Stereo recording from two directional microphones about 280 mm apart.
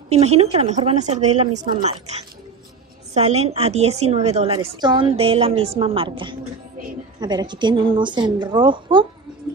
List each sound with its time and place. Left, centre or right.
0.1 s a woman's voice: right